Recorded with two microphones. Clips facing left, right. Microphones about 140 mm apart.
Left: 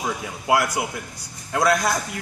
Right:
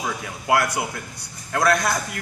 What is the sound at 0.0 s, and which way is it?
A man's voice, 15° left (ahead or behind).